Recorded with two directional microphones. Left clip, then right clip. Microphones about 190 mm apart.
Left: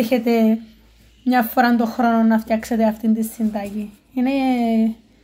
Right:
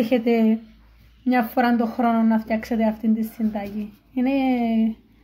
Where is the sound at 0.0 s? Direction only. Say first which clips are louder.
Left 2 dB; centre (ahead or behind).